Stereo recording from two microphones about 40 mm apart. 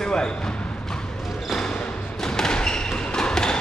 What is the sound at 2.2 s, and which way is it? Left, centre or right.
Thump, centre.